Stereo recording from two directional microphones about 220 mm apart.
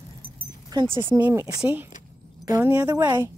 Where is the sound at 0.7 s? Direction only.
15° right (ahead or behind).